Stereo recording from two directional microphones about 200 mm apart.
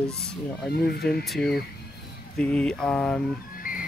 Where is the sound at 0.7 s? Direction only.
50° left (ahead or behind).